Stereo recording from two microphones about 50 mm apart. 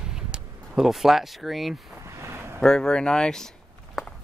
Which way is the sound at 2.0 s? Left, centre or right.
Right.